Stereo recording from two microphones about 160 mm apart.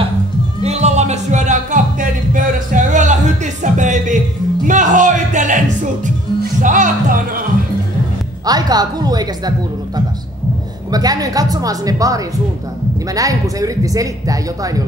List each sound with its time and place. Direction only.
0.6 s music: 40° right (ahead or behind)
6.6 s speech: 55° right (ahead or behind)
8.5 s speech: 25° right (ahead or behind)
10.9 s speech: 25° right (ahead or behind)